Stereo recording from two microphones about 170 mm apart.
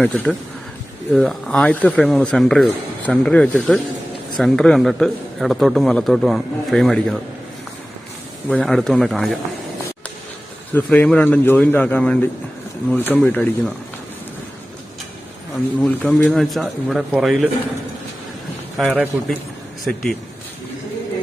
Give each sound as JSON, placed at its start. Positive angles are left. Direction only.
{"t": 0.0, "sound": "a man's voice", "side_deg": 5}
{"t": 8.5, "sound": "a man's voice", "side_deg": 0}
{"t": 10.7, "sound": "speech", "side_deg": 10}
{"t": 15.5, "sound": "a man's voice", "side_deg": 0}
{"t": 18.8, "sound": "a man's voice", "side_deg": 0}